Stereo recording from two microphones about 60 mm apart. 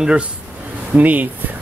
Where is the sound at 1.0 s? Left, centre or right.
Right.